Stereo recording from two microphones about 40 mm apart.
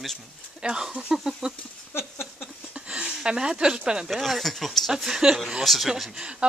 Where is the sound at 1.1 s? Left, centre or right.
Centre.